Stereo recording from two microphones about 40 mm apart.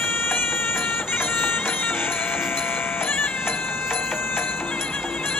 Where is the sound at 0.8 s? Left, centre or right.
Left.